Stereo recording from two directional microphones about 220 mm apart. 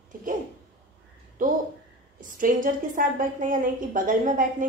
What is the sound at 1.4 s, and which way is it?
A woman's voice, 35° right (ahead or behind).